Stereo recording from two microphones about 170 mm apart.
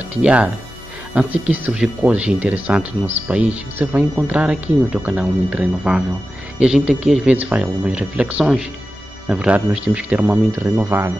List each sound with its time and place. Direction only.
0.1 s speech: 5° right (ahead or behind)